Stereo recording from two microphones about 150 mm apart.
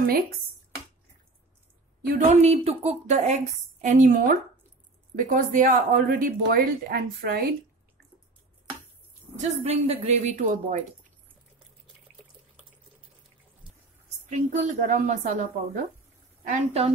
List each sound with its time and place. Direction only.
2.4 s a woman's voice: 45° right (ahead or behind); by 7.4 s 85° right
9.4 s speech: 45° right (ahead or behind)
14.3 s a woman's voice: 50° right (ahead or behind)
16.4 s speech: 40° right (ahead or behind)